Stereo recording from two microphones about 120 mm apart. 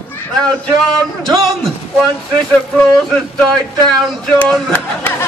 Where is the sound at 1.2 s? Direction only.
Centre (ahead or behind).